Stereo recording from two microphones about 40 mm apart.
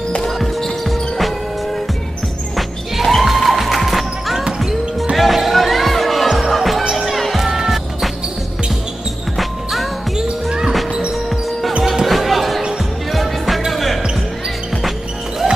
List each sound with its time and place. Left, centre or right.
0.2 s music: centre
2.5 s music: centre
9.4 s music: centre
10.2 s music: right
11.8 s basketball bounce: centre
12.1 s music: centre